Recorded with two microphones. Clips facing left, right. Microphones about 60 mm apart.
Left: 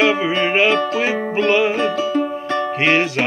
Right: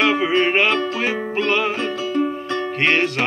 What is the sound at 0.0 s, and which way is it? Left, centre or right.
Music, centre.